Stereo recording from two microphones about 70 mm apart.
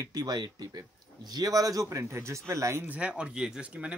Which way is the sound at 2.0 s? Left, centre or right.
Right.